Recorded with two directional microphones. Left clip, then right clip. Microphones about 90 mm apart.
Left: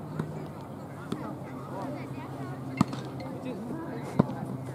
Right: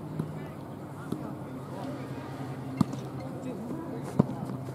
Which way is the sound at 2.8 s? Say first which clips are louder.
Left 2 dB; 20° left (ahead or behind).